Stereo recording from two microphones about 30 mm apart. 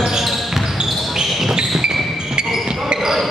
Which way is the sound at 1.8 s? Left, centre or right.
Right.